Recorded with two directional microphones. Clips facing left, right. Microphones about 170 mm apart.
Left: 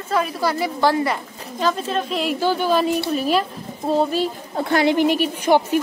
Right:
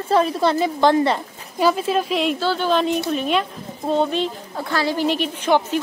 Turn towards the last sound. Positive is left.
turn(degrees=10)  # may be behind; listen again after turning